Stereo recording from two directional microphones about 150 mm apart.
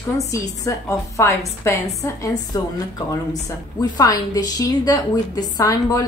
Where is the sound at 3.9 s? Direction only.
25° left (ahead or behind).